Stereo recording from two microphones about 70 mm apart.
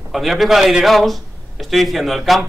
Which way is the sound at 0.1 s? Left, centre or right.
Centre.